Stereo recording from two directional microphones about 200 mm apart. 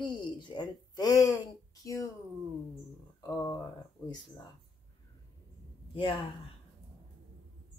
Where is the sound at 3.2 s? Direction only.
20° left (ahead or behind).